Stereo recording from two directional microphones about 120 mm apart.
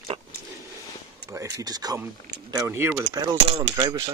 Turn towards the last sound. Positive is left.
turn(degrees=-30)  # may be behind; listen again after turning